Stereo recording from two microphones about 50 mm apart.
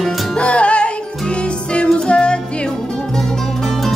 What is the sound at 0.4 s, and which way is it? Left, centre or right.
Music, left.